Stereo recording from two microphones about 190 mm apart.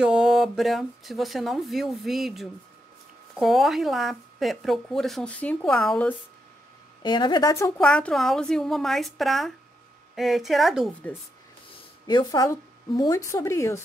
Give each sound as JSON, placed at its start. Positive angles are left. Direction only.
{"t": 0.0, "sound": "speech", "side_deg": -5}
{"t": 7.0, "sound": "speech", "side_deg": 20}
{"t": 11.7, "sound": "speech", "side_deg": 20}